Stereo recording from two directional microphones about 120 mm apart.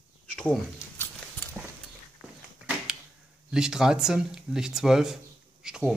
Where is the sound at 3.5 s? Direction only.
5° right (ahead or behind).